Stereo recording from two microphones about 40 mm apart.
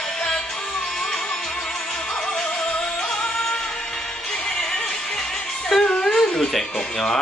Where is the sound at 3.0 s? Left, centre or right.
Centre.